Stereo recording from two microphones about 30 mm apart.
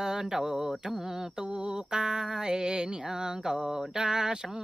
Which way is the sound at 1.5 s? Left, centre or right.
Right.